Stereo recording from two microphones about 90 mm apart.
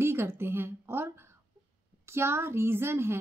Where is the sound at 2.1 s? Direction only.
30° right (ahead or behind).